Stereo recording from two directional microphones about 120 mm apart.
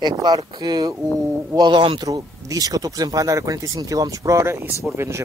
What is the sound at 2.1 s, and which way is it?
Speech, 30° right (ahead or behind).